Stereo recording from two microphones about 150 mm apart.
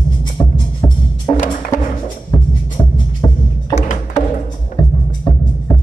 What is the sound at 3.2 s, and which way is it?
Music, 25° left (ahead or behind).